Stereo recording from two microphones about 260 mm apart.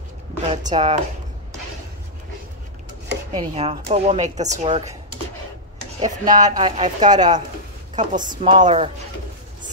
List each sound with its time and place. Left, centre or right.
0.5 s a woman's voice: right
3.3 s a woman's voice: right
5.9 s a woman's voice: right
6.4 s speech: centre
7.9 s speech: right
8.2 s a woman's voice: centre